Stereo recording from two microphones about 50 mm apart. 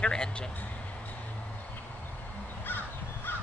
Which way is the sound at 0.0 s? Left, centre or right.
Centre.